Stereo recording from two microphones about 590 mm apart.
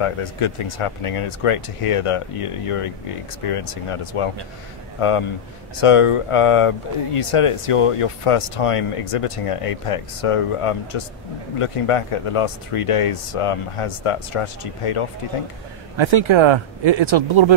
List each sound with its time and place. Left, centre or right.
0.0 s speech: left
16.0 s speech: right